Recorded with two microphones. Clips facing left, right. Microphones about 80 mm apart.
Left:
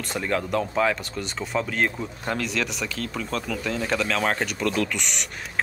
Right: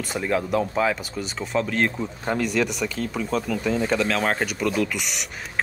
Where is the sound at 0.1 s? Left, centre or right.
Centre.